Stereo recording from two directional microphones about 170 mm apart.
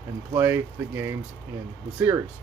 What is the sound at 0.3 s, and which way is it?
Speech, 15° right (ahead or behind).